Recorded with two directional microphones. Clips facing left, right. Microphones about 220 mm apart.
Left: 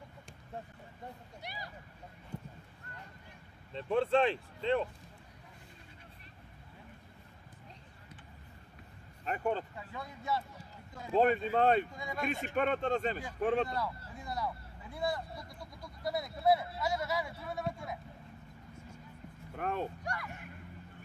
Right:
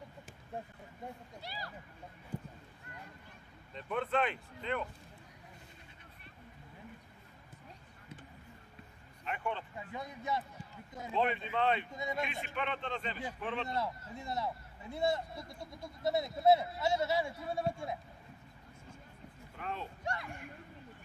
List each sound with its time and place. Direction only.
1.4 s a sound: 20° left (ahead or behind)
3.7 s speech: 30° left (ahead or behind)
9.2 s speech: 40° left (ahead or behind)
9.8 s speech: 20° right (ahead or behind)
11.1 s speech: 45° left (ahead or behind)
11.9 s speech: 20° right (ahead or behind)
12.2 s speech: 45° left (ahead or behind)
13.7 s speech: 25° right (ahead or behind)
19.5 s speech: 50° left (ahead or behind)